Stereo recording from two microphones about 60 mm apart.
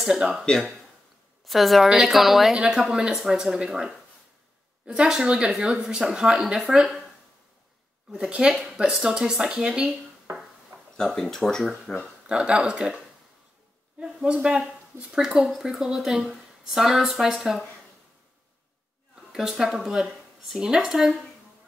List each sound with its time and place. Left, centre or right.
0.0 s a woman's voice: centre
8.3 s speech: centre
11.0 s speech: centre
12.3 s a woman's voice: centre
19.3 s speech: centre